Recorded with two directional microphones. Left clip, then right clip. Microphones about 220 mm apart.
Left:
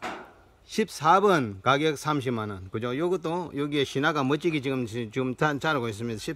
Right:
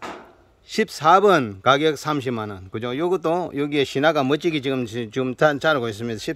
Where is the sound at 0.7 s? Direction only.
5° right (ahead or behind).